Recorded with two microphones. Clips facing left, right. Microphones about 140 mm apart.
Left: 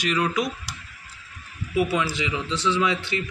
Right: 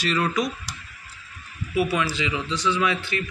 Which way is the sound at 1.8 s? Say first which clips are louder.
Even; 25° left (ahead or behind).